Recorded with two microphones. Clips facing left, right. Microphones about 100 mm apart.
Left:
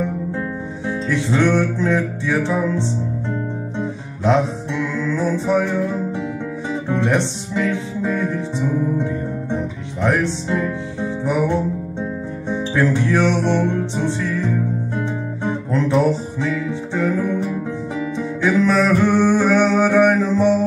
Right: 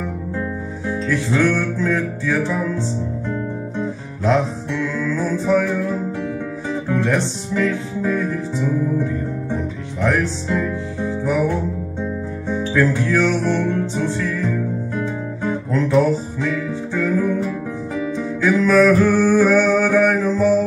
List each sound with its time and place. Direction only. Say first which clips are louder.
1.0 s music: even; 20° left (ahead or behind)
13.1 s music: left 1 dB; 20° left (ahead or behind)
15.0 s guitar: even; 20° left (ahead or behind)
16.9 s music: right 1 dB; 20° left (ahead or behind)